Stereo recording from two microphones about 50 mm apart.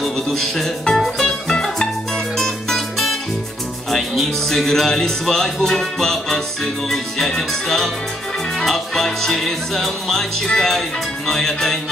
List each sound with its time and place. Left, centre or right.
0.0 s music: centre
3.9 s speech: centre
8.5 s music: centre